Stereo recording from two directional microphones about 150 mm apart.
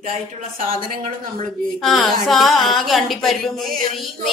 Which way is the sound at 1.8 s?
Centre (ahead or behind).